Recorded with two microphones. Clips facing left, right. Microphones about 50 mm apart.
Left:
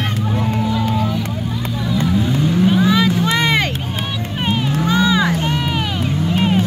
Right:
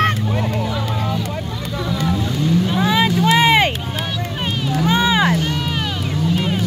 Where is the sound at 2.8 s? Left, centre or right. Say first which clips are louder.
Left 1 dB; right.